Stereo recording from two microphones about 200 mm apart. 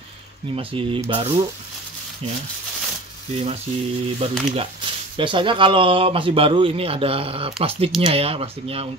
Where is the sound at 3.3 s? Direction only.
30° right (ahead or behind).